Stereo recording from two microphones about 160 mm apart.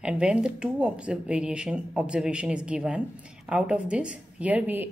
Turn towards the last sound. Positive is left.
turn(degrees=-10)  # may be behind; listen again after turning